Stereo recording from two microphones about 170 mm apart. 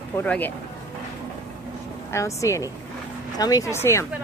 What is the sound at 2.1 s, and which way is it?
Speech, 20° left (ahead or behind).